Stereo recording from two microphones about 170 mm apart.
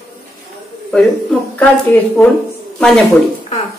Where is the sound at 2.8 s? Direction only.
5° left (ahead or behind).